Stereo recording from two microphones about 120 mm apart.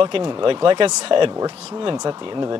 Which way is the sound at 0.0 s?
45° right (ahead or behind).